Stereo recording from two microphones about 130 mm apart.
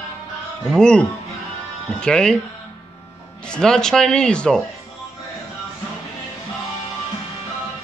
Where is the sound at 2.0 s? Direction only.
5° left (ahead or behind).